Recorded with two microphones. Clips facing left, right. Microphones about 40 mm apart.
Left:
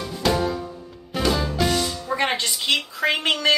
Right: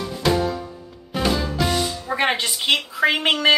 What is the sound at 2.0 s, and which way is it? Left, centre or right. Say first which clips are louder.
A woman's voice: right 2 dB; centre.